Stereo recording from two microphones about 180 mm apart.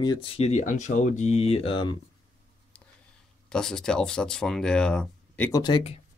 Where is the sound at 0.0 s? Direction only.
25° left (ahead or behind).